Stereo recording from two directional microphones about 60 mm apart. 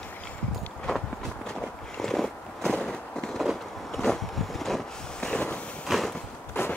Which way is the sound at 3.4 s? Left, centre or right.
Centre.